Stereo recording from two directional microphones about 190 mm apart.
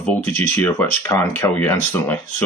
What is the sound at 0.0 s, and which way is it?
Speech, 10° left (ahead or behind).